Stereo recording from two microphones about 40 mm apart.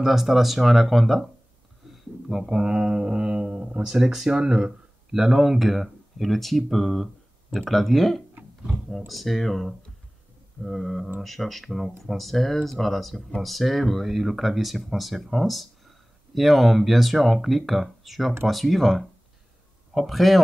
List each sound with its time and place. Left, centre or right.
0.0 s speech: centre